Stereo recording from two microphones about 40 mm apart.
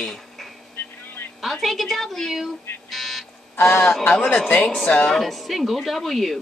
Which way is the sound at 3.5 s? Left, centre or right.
Left.